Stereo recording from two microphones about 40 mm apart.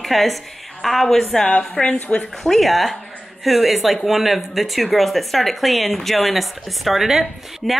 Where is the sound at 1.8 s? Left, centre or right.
Left.